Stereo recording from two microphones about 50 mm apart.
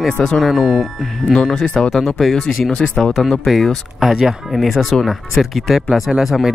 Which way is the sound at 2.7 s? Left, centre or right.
Centre.